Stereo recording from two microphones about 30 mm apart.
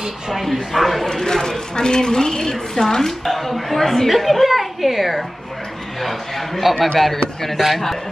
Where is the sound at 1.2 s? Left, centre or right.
Centre.